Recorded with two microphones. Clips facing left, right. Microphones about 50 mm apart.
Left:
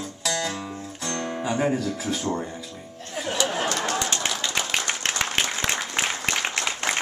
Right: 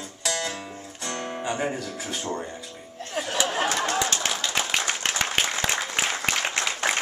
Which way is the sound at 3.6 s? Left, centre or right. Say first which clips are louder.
Right 1 dB; centre.